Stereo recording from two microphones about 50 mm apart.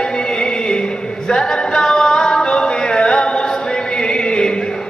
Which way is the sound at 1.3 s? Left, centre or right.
Centre.